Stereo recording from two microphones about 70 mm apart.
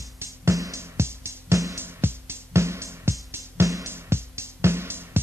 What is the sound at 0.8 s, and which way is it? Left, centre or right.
Music, right.